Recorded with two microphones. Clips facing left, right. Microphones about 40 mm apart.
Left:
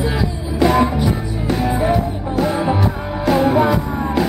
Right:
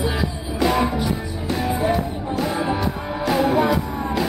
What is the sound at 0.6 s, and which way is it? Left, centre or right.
Music, centre.